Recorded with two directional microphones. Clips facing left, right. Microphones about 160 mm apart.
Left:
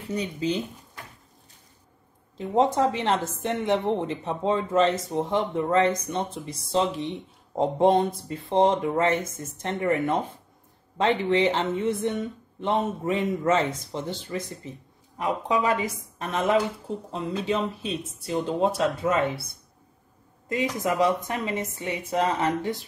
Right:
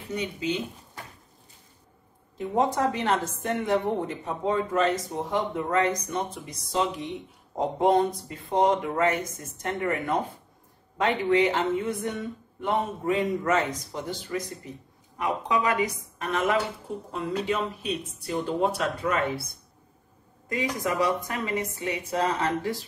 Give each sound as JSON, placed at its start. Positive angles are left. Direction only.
{"t": 0.1, "sound": "speech", "side_deg": 35}
{"t": 2.3, "sound": "a woman's voice", "side_deg": 30}
{"t": 20.4, "sound": "a woman's voice", "side_deg": 25}